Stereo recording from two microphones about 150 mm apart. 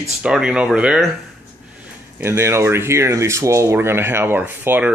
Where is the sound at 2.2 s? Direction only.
15° right (ahead or behind).